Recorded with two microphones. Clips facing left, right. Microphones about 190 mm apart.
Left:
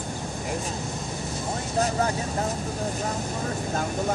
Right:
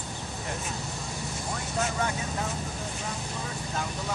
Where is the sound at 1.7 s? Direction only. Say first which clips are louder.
Left 5 dB; 35° left (ahead or behind).